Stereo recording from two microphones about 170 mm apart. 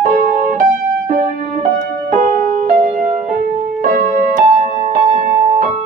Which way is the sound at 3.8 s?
50° right (ahead or behind).